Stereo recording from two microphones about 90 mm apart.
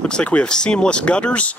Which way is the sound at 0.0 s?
10° left (ahead or behind).